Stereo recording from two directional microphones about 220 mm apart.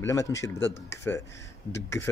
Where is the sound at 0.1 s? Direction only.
15° left (ahead or behind).